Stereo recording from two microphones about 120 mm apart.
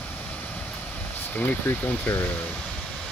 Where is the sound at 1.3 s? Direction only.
15° left (ahead or behind).